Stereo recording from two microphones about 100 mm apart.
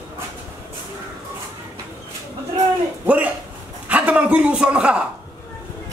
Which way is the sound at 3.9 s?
10° right (ahead or behind).